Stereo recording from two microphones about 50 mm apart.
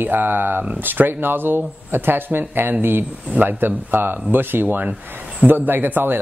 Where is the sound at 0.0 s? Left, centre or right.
Right.